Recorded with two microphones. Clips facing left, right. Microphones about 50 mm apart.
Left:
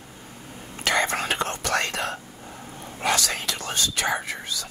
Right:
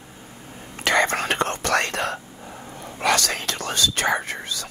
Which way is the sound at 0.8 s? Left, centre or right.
Right.